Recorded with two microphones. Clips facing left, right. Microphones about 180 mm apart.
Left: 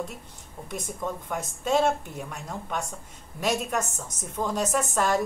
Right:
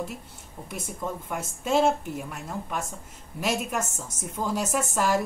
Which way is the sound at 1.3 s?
5° right (ahead or behind).